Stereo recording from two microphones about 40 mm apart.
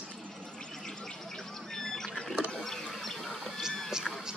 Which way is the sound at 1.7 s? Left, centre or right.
Centre.